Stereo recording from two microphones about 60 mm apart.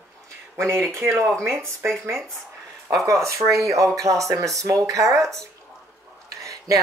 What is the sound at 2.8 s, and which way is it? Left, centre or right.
Speech, right.